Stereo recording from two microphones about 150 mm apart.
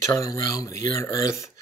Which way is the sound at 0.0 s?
20° left (ahead or behind).